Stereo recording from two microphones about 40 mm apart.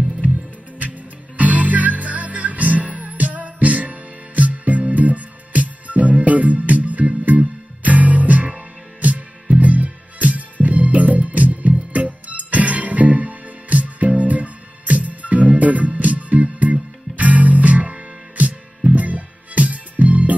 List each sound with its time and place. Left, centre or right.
0.7 s music: right